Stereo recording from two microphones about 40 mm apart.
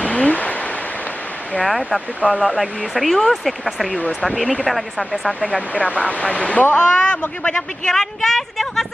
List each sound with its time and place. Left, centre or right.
0.0 s a sound: left
1.6 s speech: centre
5.8 s speech: left
6.8 s a man's voice: left
7.9 s a woman's voice: centre